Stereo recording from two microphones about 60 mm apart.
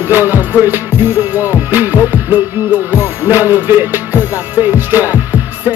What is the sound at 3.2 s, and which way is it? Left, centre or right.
Music, right.